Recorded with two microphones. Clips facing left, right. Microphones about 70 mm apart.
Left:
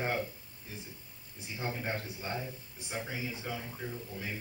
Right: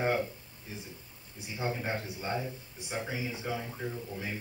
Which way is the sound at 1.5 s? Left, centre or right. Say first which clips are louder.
Right 3 dB; centre.